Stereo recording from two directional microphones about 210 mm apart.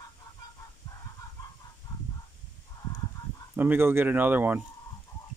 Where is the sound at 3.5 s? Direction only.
10° right (ahead or behind).